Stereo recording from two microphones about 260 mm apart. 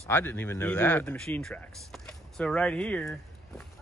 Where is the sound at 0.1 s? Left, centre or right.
Centre.